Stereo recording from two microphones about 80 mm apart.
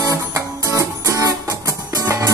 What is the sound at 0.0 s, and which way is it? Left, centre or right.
Music, right.